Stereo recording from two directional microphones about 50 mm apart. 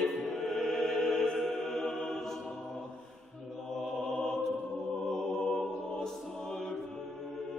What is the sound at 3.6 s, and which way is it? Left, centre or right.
Mantra, centre.